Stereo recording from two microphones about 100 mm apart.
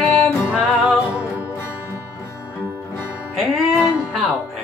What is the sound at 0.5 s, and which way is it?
Music, 10° right (ahead or behind).